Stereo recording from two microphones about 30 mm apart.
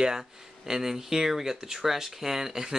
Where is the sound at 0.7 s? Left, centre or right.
Centre.